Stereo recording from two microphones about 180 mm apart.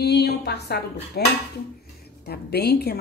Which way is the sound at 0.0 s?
65° left (ahead or behind).